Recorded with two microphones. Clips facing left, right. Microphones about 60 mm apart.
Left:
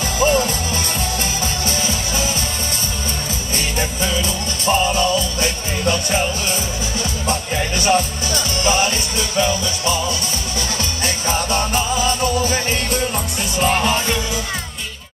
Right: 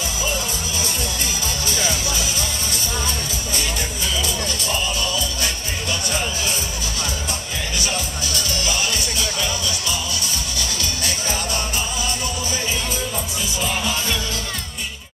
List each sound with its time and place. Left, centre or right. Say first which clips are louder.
0.2 s music: left 12 dB; left
1.7 s music: left 1 dB; left
3.5 s music: left 5 dB; left
7.2 s music: left 7 dB; left
11.1 s music: left 6 dB; left
12.4 s music: left 5 dB; left